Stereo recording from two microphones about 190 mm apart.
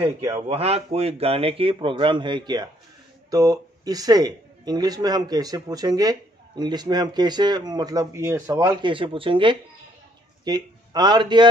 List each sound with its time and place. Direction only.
0.0 s speech: 15° right (ahead or behind)
0.5 s a man's voice: 30° right (ahead or behind)